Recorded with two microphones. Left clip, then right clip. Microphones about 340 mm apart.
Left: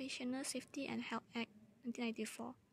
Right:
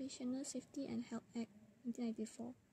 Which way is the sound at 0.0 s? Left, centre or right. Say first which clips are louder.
Left 2 dB; left.